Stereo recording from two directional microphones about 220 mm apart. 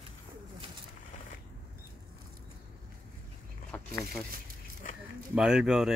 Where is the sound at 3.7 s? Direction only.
5° left (ahead or behind).